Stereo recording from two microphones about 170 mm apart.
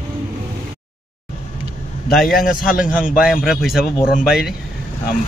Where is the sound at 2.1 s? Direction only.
Centre (ahead or behind).